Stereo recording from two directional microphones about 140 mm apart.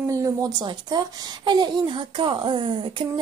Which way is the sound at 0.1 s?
25° right (ahead or behind).